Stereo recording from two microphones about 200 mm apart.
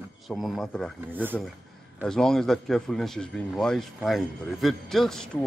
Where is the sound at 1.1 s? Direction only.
10° right (ahead or behind).